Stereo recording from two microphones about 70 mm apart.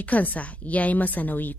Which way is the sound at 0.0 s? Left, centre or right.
Left.